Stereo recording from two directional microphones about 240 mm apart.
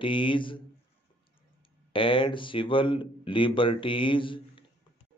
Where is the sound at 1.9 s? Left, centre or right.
Left.